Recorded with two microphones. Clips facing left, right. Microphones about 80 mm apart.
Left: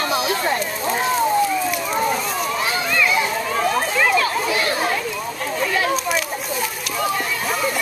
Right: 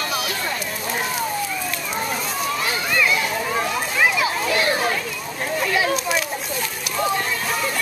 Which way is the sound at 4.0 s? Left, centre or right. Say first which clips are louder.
Even; centre.